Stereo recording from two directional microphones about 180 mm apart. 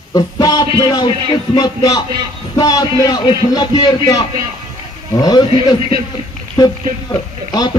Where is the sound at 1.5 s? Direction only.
20° left (ahead or behind).